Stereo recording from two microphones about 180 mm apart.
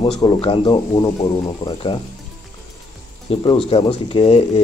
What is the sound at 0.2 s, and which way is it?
Speech, 30° left (ahead or behind).